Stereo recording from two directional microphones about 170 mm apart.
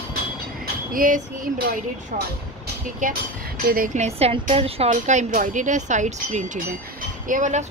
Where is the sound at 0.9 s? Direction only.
55° right (ahead or behind).